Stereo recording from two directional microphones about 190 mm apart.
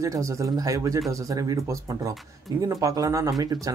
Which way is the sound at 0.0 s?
15° right (ahead or behind).